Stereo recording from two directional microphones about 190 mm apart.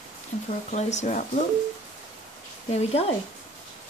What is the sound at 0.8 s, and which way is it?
Speech, 40° left (ahead or behind).